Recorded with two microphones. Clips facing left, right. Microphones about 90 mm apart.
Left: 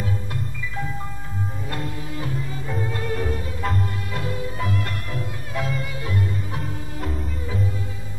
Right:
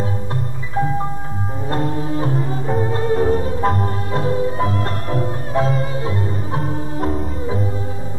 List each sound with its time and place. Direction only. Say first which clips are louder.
0.0 s music: right 5 dB; 35° right (ahead or behind)